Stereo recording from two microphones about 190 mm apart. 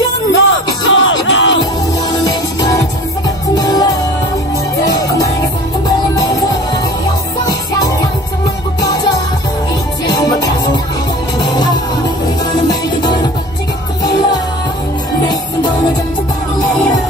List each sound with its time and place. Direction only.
0.3 s music: 90° left
2.2 s music: 20° left (ahead or behind)
10.0 s music: 20° left (ahead or behind)